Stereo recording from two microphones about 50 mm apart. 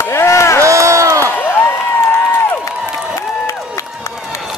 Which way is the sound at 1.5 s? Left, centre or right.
Left.